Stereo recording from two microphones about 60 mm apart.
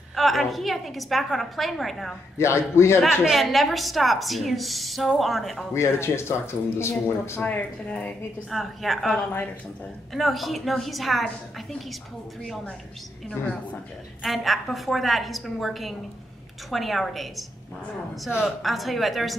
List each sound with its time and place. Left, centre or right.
0.1 s a woman's voice: centre
2.3 s speech: left
3.1 s a woman's voice: centre
5.8 s speech: left
7.4 s a woman's voice: left
8.5 s a woman's voice: centre
14.2 s a woman's voice: centre
18.6 s a woman's voice: centre